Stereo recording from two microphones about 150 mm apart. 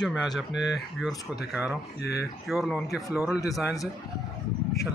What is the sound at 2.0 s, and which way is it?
Speech, 90° left.